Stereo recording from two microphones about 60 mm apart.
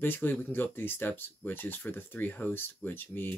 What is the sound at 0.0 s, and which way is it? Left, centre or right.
Speech, left.